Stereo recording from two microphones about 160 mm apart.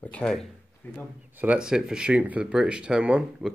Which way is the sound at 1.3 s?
10° right (ahead or behind).